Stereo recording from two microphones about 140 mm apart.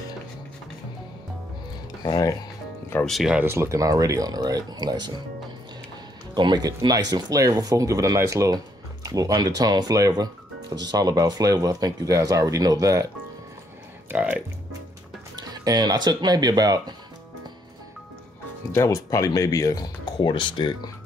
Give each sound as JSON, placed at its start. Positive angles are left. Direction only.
{"t": 2.0, "sound": "speech", "side_deg": 30}
{"t": 3.1, "sound": "speech", "side_deg": 0}
{"t": 3.3, "sound": "speech", "side_deg": -20}
{"t": 6.3, "sound": "speech", "side_deg": -30}
{"t": 14.0, "sound": "speech", "side_deg": -10}
{"t": 15.3, "sound": "speech", "side_deg": -30}
{"t": 18.7, "sound": "speech", "side_deg": 20}